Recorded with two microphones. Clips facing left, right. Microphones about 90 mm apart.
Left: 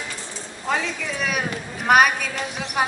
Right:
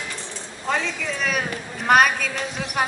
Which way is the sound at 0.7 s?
5° left (ahead or behind).